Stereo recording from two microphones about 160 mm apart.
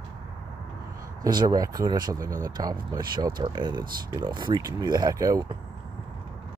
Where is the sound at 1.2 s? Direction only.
25° right (ahead or behind).